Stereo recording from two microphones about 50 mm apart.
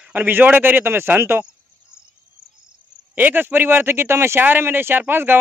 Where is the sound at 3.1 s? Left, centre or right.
Right.